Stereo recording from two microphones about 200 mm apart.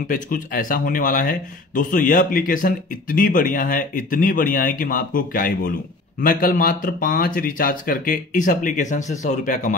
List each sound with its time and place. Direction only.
0.1 s speech: 45° left (ahead or behind)